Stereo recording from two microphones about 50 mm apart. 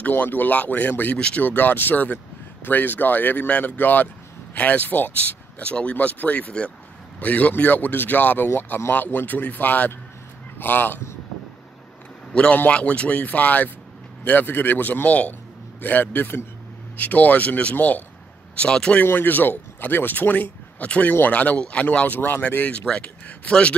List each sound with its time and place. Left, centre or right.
0.1 s speech: left
1.1 s speech: left
1.4 s speech: left
5.6 s speech: left
12.3 s a man's voice: left
18.6 s speech: centre
19.1 s speech: left